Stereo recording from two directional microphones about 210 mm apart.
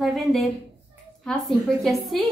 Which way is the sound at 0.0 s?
Centre (ahead or behind).